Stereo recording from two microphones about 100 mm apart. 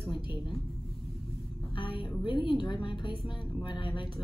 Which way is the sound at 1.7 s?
60° left (ahead or behind).